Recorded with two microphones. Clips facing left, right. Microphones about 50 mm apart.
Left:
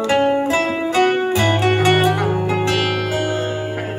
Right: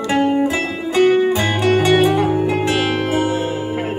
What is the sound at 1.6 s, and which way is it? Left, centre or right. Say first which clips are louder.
Music: right 4 dB; left.